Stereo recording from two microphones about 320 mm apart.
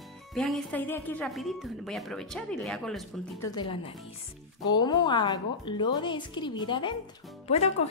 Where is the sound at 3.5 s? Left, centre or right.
Centre.